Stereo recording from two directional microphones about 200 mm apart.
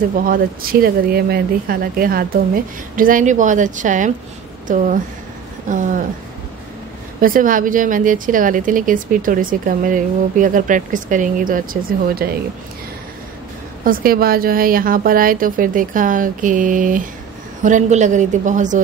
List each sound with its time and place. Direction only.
0.2 s a woman's voice: 45° right (ahead or behind)
7.2 s a woman's voice: 45° right (ahead or behind)
13.8 s a woman's voice: 45° right (ahead or behind)